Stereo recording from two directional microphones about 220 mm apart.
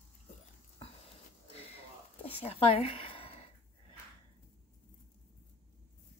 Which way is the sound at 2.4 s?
25° left (ahead or behind).